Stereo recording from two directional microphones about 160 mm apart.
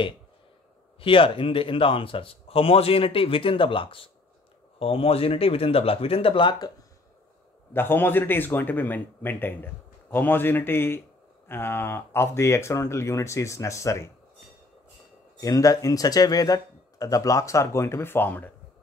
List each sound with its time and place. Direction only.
1.0 s a man's voice: 35° left (ahead or behind)
7.7 s a man's voice: 15° left (ahead or behind)
15.4 s speech: 20° left (ahead or behind)